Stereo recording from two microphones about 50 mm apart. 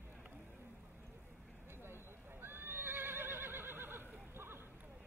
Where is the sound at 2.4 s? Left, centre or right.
Right.